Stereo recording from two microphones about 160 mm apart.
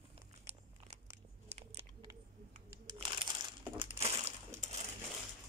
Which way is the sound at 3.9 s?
40° right (ahead or behind).